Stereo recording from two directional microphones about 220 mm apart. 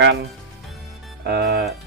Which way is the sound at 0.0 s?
45° right (ahead or behind).